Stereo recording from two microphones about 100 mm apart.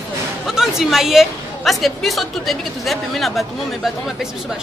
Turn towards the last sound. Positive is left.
turn(degrees=0)  # may be behind; listen again after turning